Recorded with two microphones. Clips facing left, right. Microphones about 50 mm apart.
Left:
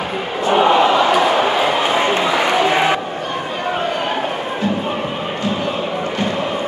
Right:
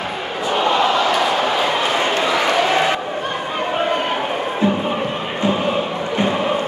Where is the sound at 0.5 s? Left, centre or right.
Centre.